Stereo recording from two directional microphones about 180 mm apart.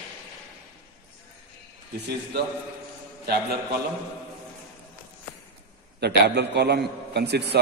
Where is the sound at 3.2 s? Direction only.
60° right (ahead or behind).